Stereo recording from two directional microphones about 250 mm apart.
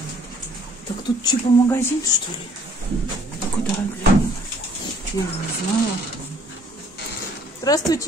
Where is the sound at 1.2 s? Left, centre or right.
Centre.